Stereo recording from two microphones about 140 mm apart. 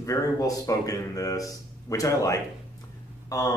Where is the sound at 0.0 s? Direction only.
25° left (ahead or behind).